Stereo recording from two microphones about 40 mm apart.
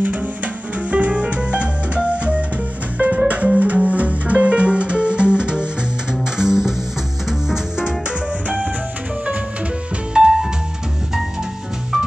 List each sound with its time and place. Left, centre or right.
0.8 s music: right
6.3 s music: centre
10.1 s music: centre